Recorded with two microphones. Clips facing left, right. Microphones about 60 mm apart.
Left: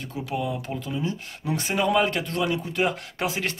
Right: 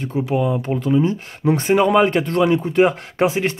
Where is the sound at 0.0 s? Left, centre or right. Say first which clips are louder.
Right 9 dB; right.